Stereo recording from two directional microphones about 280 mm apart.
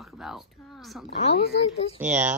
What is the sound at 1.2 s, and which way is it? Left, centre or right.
Speech, left.